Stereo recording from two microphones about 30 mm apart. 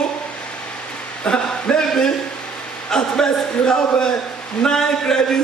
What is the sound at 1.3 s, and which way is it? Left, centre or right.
A man's voice, left.